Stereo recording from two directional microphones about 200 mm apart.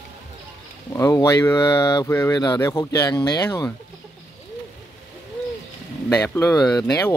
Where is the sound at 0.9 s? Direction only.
15° left (ahead or behind).